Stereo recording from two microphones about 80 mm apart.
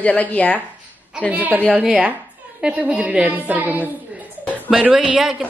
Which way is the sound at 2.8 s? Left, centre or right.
Centre.